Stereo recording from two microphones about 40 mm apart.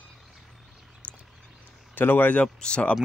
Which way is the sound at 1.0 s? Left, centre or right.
Left.